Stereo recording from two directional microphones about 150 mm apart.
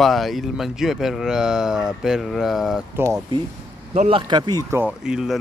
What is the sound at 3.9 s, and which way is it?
Speech, 45° right (ahead or behind).